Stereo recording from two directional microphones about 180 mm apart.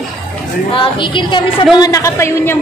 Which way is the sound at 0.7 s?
30° left (ahead or behind).